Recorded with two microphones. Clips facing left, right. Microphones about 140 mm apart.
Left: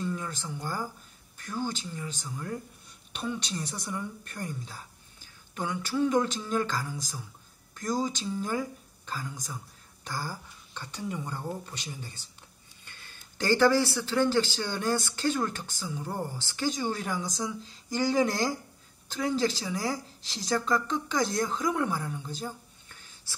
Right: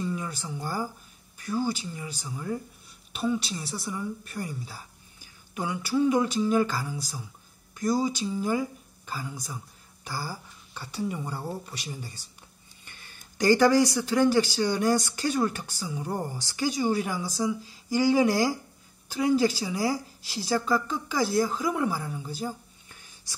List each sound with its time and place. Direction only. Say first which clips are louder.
0.0 s a man's voice: right 2 dB; 10° right (ahead or behind)